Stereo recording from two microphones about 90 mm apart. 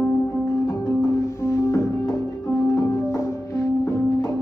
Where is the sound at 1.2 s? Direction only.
30° left (ahead or behind).